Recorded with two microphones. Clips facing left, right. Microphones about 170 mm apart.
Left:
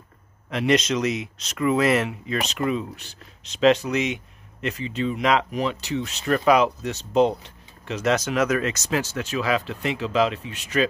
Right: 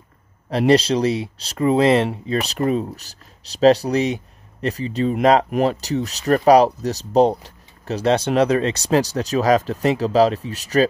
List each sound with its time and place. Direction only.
0.5 s speech: 35° right (ahead or behind)